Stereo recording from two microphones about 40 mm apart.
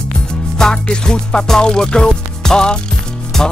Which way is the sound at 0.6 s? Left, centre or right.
Centre.